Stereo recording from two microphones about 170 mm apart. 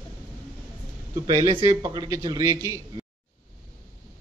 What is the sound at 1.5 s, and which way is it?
Speech, 30° right (ahead or behind).